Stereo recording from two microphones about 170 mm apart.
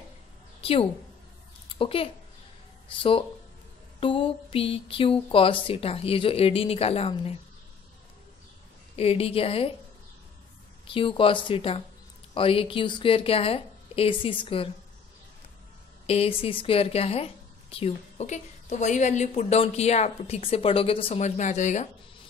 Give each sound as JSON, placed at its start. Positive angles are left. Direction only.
{"t": 0.6, "sound": "a sound", "side_deg": 35}
{"t": 1.7, "sound": "a woman's voice", "side_deg": 30}
{"t": 8.9, "sound": "a woman's voice", "side_deg": 35}
{"t": 10.9, "sound": "a woman's voice", "side_deg": 30}
{"t": 16.1, "sound": "a woman's voice", "side_deg": 35}